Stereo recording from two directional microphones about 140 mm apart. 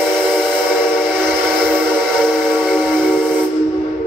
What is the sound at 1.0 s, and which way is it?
Train, 5° left (ahead or behind).